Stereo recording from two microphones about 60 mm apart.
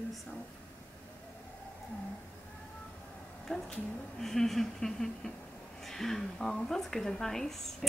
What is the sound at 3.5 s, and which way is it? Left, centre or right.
Speech, centre.